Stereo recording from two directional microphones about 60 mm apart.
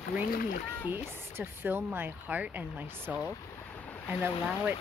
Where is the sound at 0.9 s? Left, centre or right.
Right.